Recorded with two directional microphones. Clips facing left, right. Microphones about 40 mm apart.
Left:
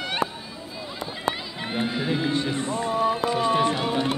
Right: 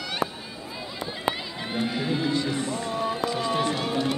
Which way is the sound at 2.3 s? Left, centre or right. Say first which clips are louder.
Left 1 dB; left.